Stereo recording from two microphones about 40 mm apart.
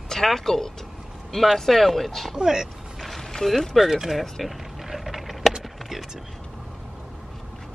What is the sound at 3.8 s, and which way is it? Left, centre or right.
Speech, centre.